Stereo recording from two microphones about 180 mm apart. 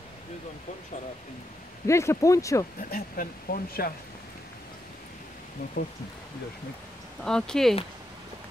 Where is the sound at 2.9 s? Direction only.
50° left (ahead or behind).